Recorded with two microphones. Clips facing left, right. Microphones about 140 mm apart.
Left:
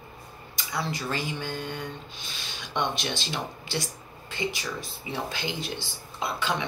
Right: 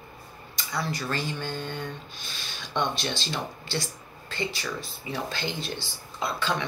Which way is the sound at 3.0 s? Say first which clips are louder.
Right 1 dB; 15° left (ahead or behind).